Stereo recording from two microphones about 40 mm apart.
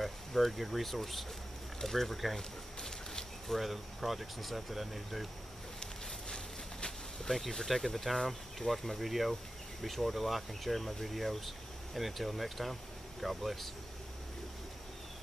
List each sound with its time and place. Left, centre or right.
0.0 s speech: centre
1.8 s a sound: centre
3.5 s speech: centre
5.8 s insect: centre
7.3 s speech: centre